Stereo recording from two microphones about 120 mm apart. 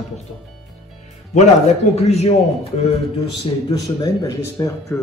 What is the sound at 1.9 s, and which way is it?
Speech, 60° left (ahead or behind).